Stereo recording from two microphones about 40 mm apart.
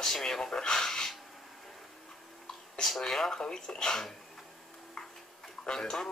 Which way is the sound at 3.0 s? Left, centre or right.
Centre.